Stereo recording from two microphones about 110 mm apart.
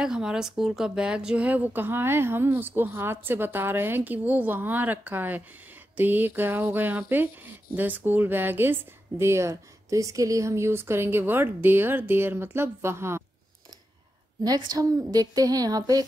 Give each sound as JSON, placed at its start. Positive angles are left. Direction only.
{"t": 0.0, "sound": "speech", "side_deg": -5}
{"t": 14.4, "sound": "speech", "side_deg": -35}